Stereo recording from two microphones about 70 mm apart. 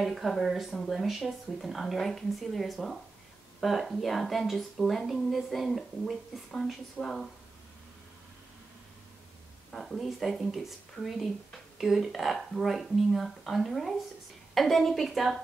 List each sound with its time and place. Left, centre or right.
0.0 s a woman's voice: centre
9.7 s a woman's voice: centre